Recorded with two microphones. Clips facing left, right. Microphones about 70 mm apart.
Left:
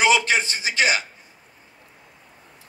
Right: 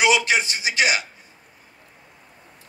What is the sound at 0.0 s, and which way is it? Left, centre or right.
A man's voice, left.